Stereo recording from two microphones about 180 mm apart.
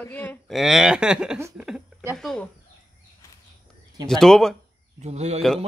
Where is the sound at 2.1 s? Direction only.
5° left (ahead or behind).